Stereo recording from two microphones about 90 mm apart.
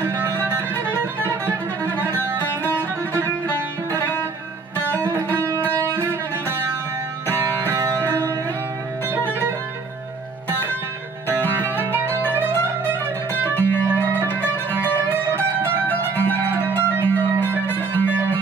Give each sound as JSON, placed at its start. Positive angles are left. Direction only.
{"t": 0.4, "sound": "music", "side_deg": -20}
{"t": 2.0, "sound": "music", "side_deg": 20}
{"t": 5.7, "sound": "music", "side_deg": -25}
{"t": 9.1, "sound": "music", "side_deg": 20}
{"t": 11.5, "sound": "music", "side_deg": -25}
{"t": 13.6, "sound": "music", "side_deg": 20}
{"t": 16.2, "sound": "music", "side_deg": 20}